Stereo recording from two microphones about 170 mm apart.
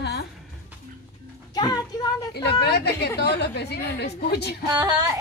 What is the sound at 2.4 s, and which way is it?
A woman's voice, 75° left (ahead or behind).